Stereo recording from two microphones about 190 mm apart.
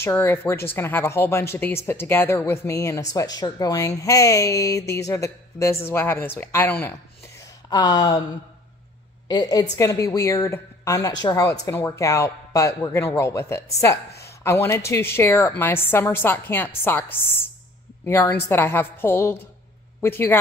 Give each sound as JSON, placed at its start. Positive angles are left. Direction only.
{"t": 0.0, "sound": "a woman's voice", "side_deg": 15}
{"t": 7.7, "sound": "speech", "side_deg": 20}
{"t": 9.3, "sound": "a woman's voice", "side_deg": 20}